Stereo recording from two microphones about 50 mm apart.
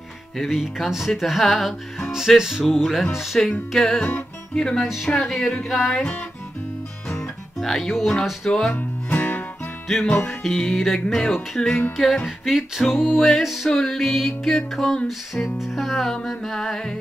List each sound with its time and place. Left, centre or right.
0.5 s speech: centre
2.0 s music: centre
2.6 s speech: centre
3.4 s music: centre
4.8 s speech: centre
5.1 s music: centre
7.1 s music: centre
8.7 s music: left
10.4 s music: centre
12.5 s speech: centre
13.7 s music: centre
15.6 s speech: centre
16.1 s music: centre